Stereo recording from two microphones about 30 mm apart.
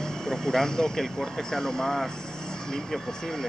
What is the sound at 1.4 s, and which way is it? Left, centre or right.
Speech, centre.